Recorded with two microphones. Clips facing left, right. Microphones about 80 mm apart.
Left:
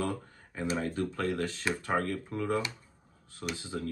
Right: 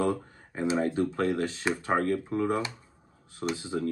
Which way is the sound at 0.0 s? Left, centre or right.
Centre.